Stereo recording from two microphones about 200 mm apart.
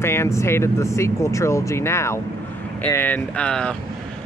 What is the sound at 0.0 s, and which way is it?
Speech, 15° left (ahead or behind).